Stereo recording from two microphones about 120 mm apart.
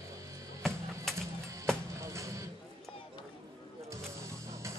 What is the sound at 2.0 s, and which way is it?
Music, 25° right (ahead or behind).